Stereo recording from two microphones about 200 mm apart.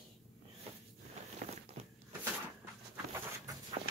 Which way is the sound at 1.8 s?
35° right (ahead or behind).